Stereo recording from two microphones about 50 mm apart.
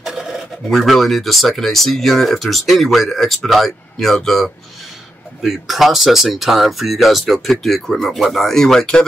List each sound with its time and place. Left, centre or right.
0.0 s speech: centre